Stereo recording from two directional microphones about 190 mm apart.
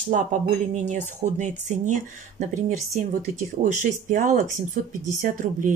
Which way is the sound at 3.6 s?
45° right (ahead or behind).